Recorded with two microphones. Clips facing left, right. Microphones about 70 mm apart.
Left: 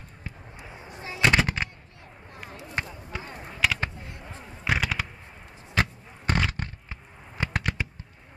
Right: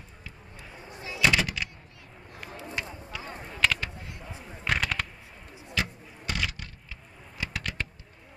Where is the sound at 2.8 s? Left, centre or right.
Left.